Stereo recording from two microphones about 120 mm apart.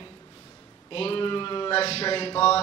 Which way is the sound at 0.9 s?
50° left (ahead or behind).